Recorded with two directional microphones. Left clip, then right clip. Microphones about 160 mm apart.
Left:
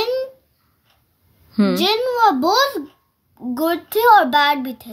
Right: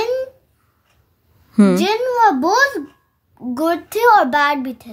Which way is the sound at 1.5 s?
55° right (ahead or behind).